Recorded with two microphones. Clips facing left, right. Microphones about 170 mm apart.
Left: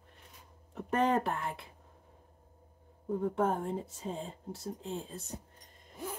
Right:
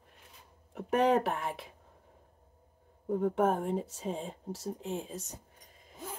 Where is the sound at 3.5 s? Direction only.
20° right (ahead or behind).